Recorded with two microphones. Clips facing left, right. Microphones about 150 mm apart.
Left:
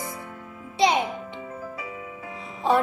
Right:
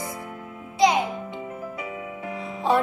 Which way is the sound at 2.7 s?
Centre (ahead or behind).